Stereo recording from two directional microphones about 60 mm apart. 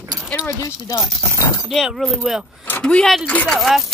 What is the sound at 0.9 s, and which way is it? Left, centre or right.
Speech, left.